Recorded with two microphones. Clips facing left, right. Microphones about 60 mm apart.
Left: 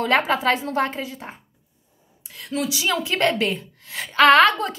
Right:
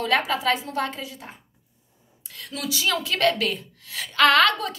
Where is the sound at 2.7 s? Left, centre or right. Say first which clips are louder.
Right 2 dB; centre.